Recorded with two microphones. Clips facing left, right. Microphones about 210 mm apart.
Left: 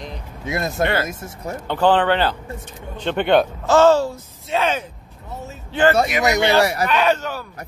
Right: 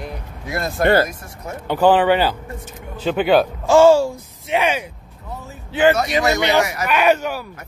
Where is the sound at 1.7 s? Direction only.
10° right (ahead or behind).